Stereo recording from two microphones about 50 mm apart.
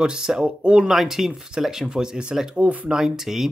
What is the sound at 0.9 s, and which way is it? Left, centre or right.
Speech, centre.